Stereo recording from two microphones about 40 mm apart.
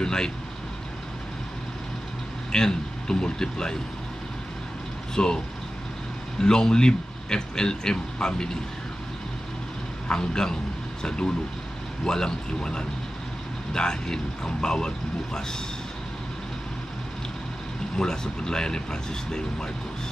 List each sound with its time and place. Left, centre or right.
0.0 s speech: centre
2.5 s speech: centre
5.1 s speech: centre
6.4 s a man's voice: centre
10.0 s speech: centre
17.9 s speech: centre